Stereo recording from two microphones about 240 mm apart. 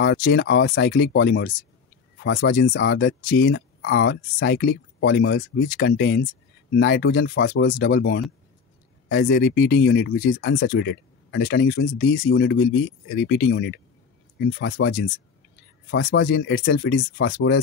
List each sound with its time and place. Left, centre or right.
0.0 s speech: left